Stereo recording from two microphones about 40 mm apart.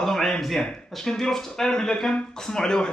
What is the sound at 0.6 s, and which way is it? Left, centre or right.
Speech, centre.